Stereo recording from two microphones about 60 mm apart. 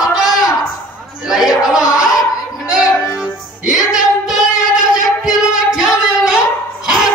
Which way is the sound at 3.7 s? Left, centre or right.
Centre.